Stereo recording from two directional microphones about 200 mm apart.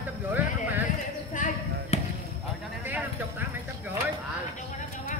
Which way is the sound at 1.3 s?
40° left (ahead or behind).